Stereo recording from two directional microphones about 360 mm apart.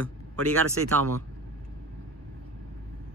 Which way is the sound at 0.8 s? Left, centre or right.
Right.